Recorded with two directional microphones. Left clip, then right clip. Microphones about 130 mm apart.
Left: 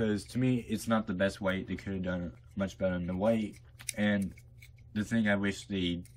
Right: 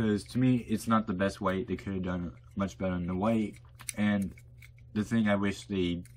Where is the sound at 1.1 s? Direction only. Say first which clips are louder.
Right 1 dB; 20° right (ahead or behind).